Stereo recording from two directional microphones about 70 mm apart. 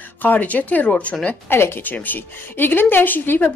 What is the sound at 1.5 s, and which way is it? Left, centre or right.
A woman's voice, left.